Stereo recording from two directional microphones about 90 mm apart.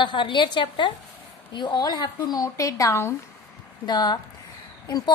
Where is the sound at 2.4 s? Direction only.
35° left (ahead or behind).